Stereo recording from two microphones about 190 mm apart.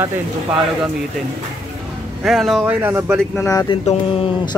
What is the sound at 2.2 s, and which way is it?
Speech, centre (ahead or behind).